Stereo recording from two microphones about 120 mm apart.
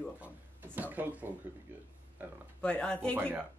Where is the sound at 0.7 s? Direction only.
15° right (ahead or behind).